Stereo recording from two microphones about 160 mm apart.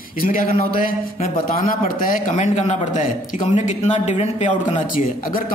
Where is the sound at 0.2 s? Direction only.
60° left (ahead or behind); by 4.8 s 40° left (ahead or behind).